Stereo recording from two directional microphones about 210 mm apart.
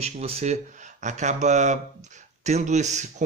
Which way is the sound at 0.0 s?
30° right (ahead or behind).